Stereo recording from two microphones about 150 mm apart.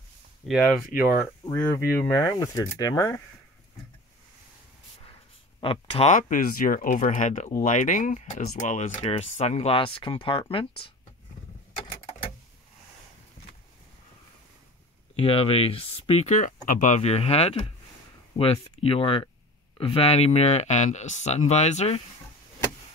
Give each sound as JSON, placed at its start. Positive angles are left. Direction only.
{"t": 0.5, "sound": "speech", "side_deg": -5}
{"t": 1.2, "sound": "speech", "side_deg": 15}
{"t": 5.6, "sound": "speech", "side_deg": 35}
{"t": 6.1, "sound": "speech", "side_deg": 60}
{"t": 15.1, "sound": "speech", "side_deg": 40}